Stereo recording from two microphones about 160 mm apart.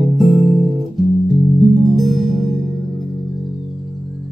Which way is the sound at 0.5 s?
40° right (ahead or behind).